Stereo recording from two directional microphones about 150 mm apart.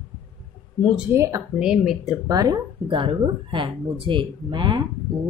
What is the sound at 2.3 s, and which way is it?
Speech, 25° right (ahead or behind).